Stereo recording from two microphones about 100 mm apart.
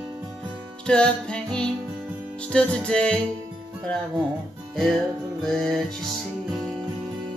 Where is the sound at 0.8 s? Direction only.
10° left (ahead or behind).